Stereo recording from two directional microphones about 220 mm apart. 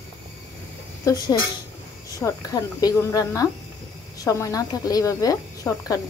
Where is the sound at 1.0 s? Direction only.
15° left (ahead or behind).